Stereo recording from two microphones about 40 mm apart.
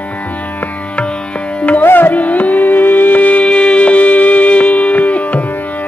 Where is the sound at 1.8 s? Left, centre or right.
Left.